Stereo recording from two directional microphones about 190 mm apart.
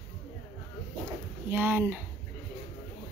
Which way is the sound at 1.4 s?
10° right (ahead or behind).